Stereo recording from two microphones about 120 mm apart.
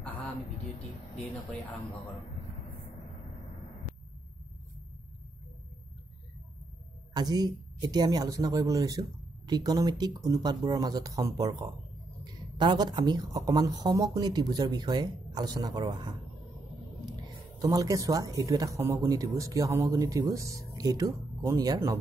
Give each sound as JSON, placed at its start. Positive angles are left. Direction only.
{"t": 7.2, "sound": "a woman's voice", "side_deg": -35}